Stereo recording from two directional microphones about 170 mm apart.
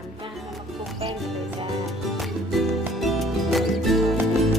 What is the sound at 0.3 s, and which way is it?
Music, centre (ahead or behind).